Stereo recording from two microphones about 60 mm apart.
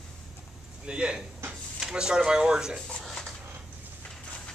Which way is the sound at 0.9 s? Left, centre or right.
Centre.